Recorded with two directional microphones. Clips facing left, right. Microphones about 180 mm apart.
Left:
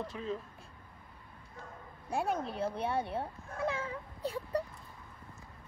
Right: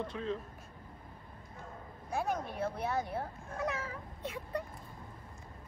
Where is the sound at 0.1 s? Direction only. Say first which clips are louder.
Right 1 dB; centre (ahead or behind).